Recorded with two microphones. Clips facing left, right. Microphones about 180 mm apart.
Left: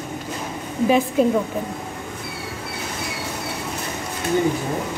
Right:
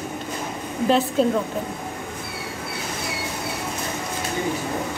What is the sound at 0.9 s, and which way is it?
Speech, 10° left (ahead or behind).